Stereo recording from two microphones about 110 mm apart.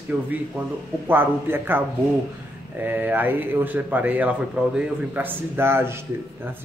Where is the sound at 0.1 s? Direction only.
15° right (ahead or behind).